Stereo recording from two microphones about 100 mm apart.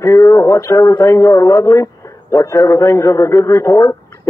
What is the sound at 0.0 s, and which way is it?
A man's voice, 30° left (ahead or behind).